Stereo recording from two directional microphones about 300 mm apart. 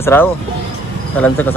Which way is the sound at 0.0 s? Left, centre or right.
Centre.